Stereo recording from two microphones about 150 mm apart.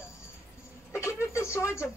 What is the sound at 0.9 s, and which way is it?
Speech, 20° left (ahead or behind).